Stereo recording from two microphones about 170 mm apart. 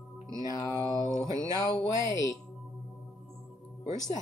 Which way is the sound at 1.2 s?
20° right (ahead or behind).